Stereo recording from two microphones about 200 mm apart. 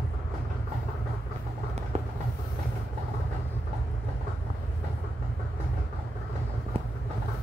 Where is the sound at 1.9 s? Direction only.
30° right (ahead or behind).